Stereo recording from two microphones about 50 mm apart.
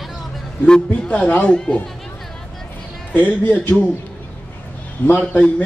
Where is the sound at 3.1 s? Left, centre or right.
Left.